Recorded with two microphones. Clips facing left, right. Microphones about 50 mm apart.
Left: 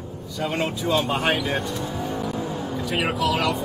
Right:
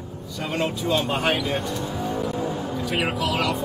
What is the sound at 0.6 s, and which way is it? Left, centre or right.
Speech, centre.